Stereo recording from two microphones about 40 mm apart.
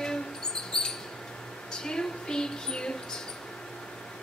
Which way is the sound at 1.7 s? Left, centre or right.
Centre.